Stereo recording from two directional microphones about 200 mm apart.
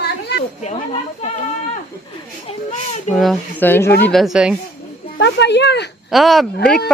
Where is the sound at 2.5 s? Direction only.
35° left (ahead or behind).